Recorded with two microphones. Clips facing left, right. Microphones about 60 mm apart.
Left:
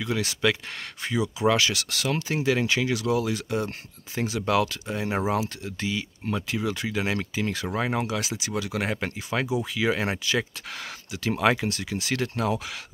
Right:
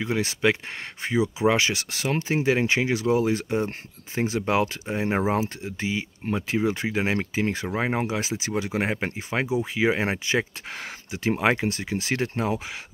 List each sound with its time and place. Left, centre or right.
0.0 s speech: right